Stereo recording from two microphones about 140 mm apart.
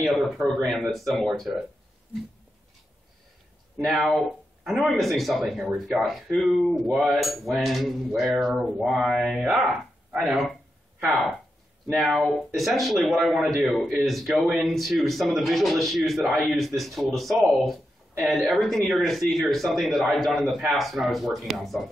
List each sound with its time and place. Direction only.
0.0 s speech: centre (ahead or behind)
3.7 s speech: centre (ahead or behind)
12.0 s speech: centre (ahead or behind)